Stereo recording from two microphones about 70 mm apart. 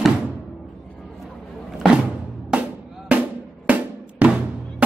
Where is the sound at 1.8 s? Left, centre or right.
Centre.